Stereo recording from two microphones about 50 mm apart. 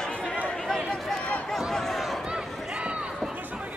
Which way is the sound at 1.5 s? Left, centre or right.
Centre.